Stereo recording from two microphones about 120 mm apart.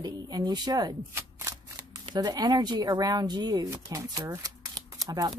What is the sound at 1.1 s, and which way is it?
Shuffling cards, 25° right (ahead or behind).